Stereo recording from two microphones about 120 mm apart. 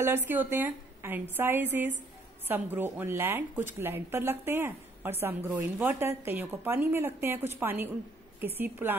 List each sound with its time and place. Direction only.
0.0 s a woman's voice: 20° right (ahead or behind)